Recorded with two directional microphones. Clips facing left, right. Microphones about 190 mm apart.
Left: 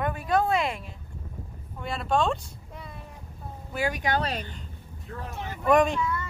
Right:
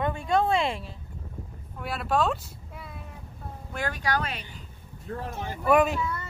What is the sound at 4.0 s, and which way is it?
Speech, 25° left (ahead or behind).